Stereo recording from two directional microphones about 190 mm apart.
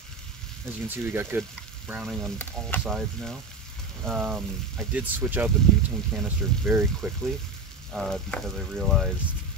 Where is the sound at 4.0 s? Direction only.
Centre (ahead or behind).